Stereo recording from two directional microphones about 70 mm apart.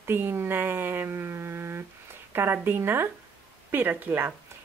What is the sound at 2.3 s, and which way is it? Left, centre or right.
A woman's voice, right.